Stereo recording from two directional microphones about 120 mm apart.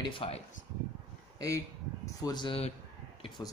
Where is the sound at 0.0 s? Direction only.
45° left (ahead or behind).